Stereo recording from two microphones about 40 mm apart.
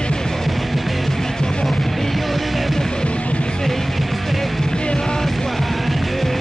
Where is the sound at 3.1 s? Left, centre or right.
Left.